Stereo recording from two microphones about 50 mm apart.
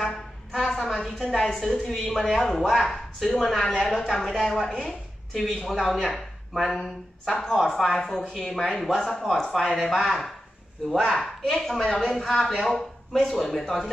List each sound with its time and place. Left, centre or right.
0.5 s a sound: centre
1.1 s speech: centre
2.3 s a woman's voice: centre
11.0 s speech: centre